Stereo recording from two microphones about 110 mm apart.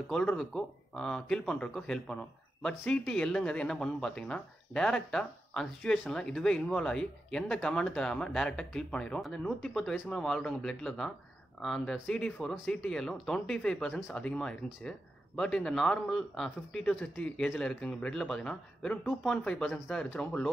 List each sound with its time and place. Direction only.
0.1 s a man's voice: 15° left (ahead or behind)